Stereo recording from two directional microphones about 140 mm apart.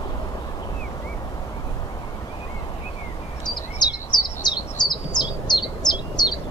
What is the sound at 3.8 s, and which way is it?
Bird, 30° left (ahead or behind).